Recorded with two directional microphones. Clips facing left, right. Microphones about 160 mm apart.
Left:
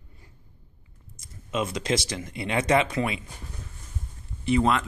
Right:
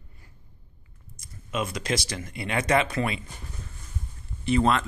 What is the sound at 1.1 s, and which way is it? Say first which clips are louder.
Speech: left 2 dB; 25° left (ahead or behind).